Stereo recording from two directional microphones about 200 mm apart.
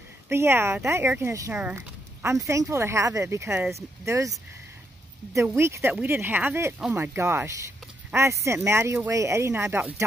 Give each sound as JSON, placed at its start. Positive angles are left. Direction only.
{"t": 0.3, "sound": "speech", "side_deg": -15}
{"t": 5.5, "sound": "speech", "side_deg": -15}